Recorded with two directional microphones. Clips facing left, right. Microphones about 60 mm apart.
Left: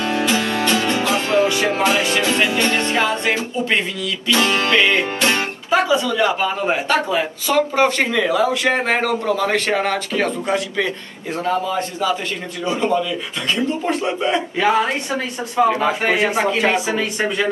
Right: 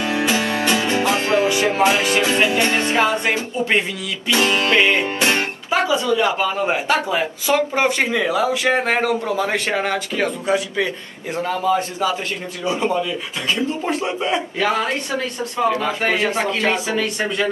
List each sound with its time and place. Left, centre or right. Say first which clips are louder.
0.1 s music: even; right
5.7 s a man's voice: left 2 dB; centre
14.6 s speech: left 4 dB; centre